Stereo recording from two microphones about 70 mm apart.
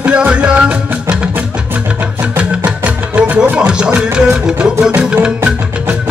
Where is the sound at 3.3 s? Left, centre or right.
Centre.